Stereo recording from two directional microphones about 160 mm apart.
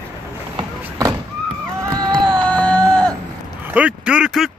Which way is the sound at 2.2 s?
5° left (ahead or behind).